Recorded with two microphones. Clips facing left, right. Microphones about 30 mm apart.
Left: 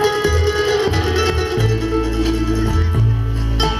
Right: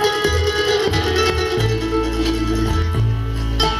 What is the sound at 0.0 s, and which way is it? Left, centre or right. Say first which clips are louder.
Music: left 1 dB; right.